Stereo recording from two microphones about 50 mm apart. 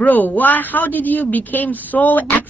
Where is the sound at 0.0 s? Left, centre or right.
Left.